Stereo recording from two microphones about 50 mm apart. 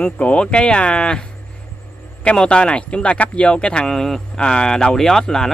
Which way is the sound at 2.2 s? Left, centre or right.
Centre.